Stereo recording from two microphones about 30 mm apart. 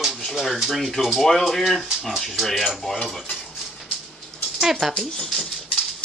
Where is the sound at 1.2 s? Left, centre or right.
Centre.